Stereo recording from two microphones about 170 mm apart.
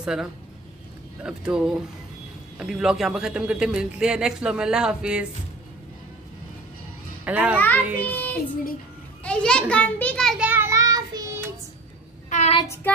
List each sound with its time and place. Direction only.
0.0 s a man's voice: 5° right (ahead or behind)
7.2 s a child's voice: 10° right (ahead or behind)
7.5 s a child's voice: 10° left (ahead or behind)
8.0 s child singing: 10° left (ahead or behind)
9.2 s a child's voice: 5° left (ahead or behind)
10.5 s child singing: 15° right (ahead or behind)
12.3 s child singing: 40° left (ahead or behind)